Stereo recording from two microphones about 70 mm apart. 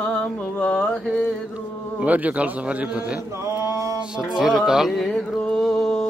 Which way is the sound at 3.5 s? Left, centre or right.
Right.